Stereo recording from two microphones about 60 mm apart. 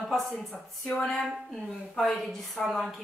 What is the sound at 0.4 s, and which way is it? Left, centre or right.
A woman's voice, centre.